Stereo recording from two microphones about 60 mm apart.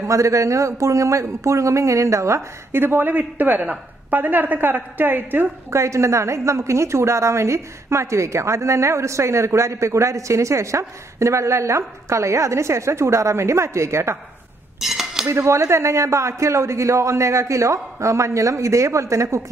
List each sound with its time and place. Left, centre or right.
0.0 s speech: right
2.8 s speech: right
5.7 s a woman's voice: right
14.8 s cutlery: centre
15.2 s speech: right